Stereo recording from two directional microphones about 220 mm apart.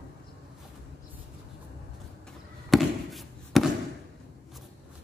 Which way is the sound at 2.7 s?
Centre (ahead or behind).